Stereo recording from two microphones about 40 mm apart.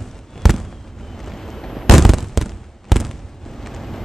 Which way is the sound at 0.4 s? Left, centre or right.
Centre.